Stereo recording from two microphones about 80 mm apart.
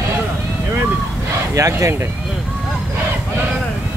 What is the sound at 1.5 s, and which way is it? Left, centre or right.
Speech, right.